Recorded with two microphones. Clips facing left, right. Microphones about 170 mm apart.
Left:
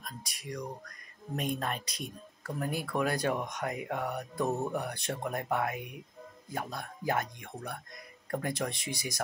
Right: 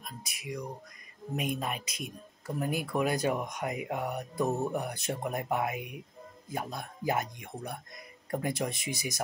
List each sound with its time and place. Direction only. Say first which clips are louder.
0.0 s speech: right 1 dB; 5° right (ahead or behind)